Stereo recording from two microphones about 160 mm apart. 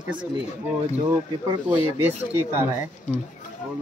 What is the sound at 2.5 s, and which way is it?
Speech, 15° right (ahead or behind).